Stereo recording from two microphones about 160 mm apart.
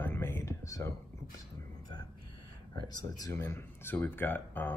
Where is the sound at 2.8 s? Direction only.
25° left (ahead or behind).